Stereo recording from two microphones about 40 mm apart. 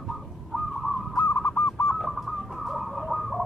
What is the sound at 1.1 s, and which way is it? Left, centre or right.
Bird, left.